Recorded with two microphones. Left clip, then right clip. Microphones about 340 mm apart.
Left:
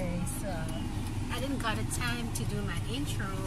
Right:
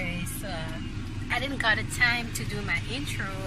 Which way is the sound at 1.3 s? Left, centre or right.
Centre.